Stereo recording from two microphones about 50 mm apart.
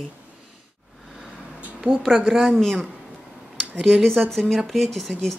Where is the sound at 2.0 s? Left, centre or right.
Centre.